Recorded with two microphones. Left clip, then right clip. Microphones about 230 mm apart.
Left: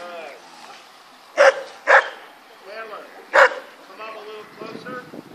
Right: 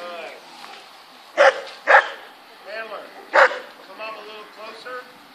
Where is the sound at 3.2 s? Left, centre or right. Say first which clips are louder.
Left 1 dB; centre.